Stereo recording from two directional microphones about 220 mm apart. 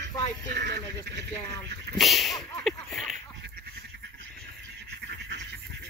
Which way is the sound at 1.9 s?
Centre (ahead or behind).